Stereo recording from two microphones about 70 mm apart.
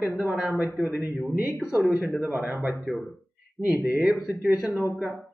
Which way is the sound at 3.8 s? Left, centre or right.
Centre.